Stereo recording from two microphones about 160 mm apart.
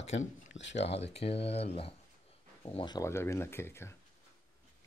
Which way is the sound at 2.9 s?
15° left (ahead or behind).